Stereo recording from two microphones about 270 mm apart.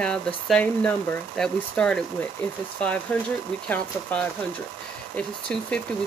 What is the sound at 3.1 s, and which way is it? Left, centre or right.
Speech, centre.